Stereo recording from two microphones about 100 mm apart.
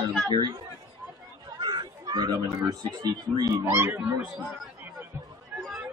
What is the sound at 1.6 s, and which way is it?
Speech, 45° right (ahead or behind).